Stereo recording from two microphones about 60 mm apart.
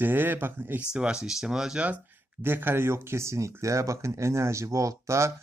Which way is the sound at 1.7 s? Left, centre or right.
Right.